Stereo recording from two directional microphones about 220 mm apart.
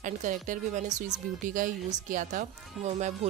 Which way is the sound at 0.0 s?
35° right (ahead or behind).